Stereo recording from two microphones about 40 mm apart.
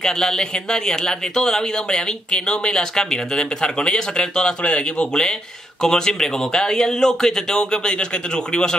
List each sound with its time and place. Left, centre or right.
0.0 s speech: centre